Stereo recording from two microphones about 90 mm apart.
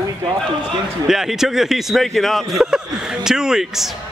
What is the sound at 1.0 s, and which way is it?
Speech, 5° right (ahead or behind).